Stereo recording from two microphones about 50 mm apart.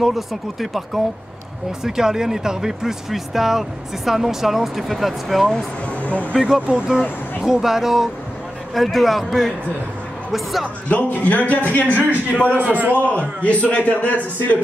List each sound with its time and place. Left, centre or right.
0.0 s speech: centre
6.4 s speech: centre
10.9 s speech: left
12.6 s a man's voice: right
12.9 s a man's voice: left